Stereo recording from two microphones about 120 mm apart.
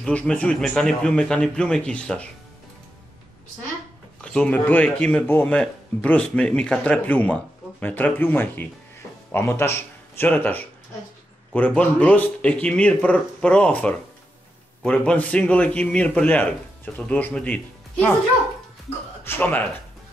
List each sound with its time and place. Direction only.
0.0 s speech: 10° left (ahead or behind)
4.2 s speech: 10° left (ahead or behind)
19.2 s speech: 15° left (ahead or behind)